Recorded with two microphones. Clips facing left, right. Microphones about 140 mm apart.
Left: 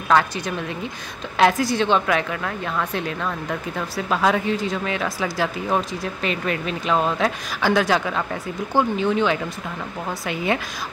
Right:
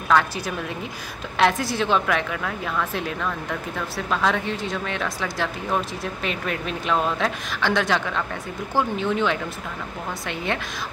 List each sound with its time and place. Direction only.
0.1 s a woman's voice: centre (ahead or behind)